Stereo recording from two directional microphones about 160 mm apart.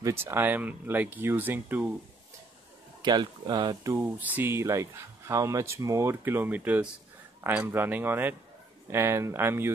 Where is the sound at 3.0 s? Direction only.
25° right (ahead or behind).